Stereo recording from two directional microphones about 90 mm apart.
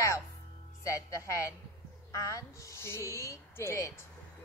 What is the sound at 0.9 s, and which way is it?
Speech, 35° left (ahead or behind).